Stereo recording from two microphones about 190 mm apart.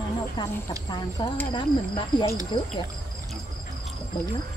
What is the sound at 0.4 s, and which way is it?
Speech, 25° left (ahead or behind).